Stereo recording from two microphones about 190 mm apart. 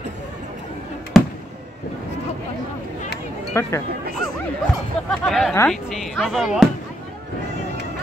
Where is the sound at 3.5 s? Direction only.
15° left (ahead or behind).